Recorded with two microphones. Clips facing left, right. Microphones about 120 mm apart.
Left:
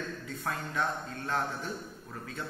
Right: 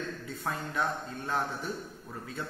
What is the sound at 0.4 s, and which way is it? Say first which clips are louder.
Speech: right 1 dB; 20° right (ahead or behind).